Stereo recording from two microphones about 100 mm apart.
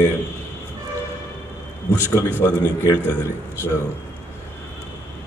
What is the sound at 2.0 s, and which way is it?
Speech, 25° left (ahead or behind).